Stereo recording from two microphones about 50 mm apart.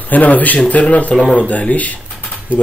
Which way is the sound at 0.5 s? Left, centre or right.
Left.